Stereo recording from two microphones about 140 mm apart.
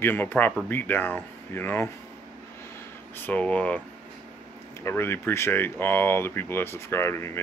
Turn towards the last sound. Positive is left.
turn(degrees=20)  # may be behind; listen again after turning